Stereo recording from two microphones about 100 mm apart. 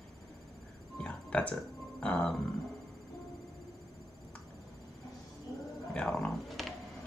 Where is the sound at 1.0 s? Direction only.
10° left (ahead or behind).